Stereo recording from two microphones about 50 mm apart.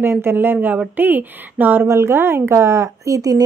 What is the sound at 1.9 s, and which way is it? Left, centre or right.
Speech, right.